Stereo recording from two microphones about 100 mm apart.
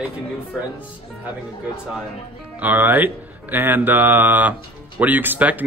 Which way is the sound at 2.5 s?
20° right (ahead or behind).